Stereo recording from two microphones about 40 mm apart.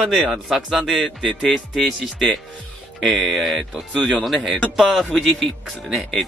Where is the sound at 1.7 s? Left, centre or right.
Centre.